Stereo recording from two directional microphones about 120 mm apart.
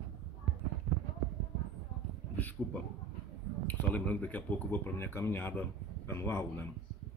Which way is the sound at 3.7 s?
15° left (ahead or behind).